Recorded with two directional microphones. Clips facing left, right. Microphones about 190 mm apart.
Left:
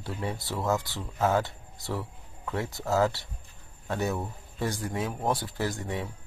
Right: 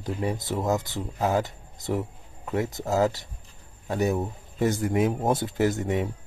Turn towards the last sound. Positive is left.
turn(degrees=-20)  # may be behind; listen again after turning